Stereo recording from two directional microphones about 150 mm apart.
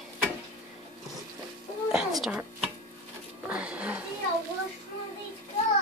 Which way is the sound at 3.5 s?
10° right (ahead or behind).